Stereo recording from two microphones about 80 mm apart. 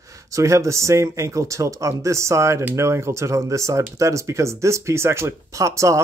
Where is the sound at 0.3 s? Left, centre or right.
Right.